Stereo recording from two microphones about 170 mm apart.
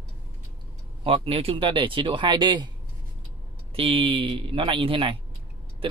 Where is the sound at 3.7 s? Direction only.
35° right (ahead or behind).